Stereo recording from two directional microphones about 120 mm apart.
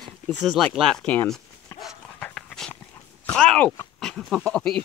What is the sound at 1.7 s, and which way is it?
Dog, 25° left (ahead or behind).